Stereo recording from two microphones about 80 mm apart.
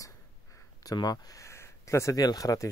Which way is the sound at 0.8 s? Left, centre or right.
Left.